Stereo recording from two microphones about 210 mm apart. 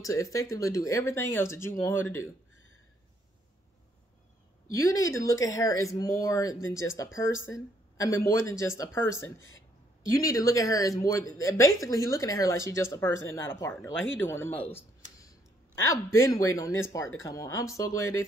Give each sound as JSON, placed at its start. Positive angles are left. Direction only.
{"t": 0.0, "sound": "speech", "side_deg": 15}
{"t": 4.6, "sound": "speech", "side_deg": 15}
{"t": 10.1, "sound": "speech", "side_deg": 15}
{"t": 15.8, "sound": "speech", "side_deg": 15}